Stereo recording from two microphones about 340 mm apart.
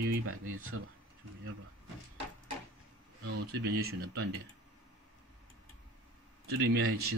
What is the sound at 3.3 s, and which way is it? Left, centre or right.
Speech, right.